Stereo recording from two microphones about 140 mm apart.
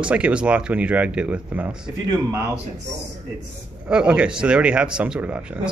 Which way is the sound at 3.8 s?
5° right (ahead or behind).